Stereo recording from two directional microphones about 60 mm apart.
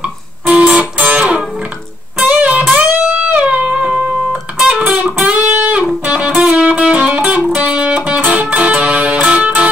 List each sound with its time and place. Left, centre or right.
0.0 s guitar: right
2.2 s music: right
5.0 s guitar: right
6.0 s music: centre